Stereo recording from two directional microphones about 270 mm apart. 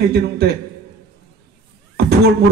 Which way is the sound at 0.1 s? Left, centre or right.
Right.